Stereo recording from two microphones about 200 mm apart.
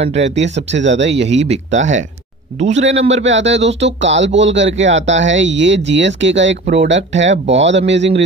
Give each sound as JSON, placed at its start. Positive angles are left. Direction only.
{"t": 0.0, "sound": "speech", "side_deg": -60}
{"t": 1.5, "sound": "a man's voice", "side_deg": -35}
{"t": 3.3, "sound": "speech", "side_deg": -65}